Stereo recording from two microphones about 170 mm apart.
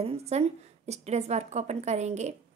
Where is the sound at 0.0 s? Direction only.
35° right (ahead or behind).